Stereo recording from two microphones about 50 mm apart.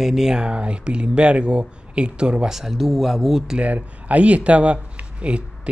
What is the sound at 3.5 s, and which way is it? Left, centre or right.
Speech, right.